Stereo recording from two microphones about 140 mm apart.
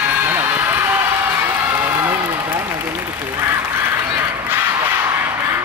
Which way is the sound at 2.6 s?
15° right (ahead or behind).